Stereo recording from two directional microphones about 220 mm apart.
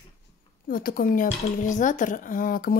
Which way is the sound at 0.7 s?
40° left (ahead or behind).